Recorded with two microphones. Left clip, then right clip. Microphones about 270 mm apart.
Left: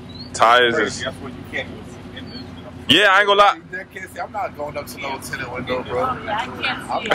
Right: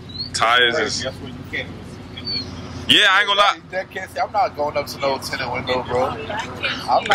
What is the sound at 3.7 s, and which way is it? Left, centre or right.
Speech, right.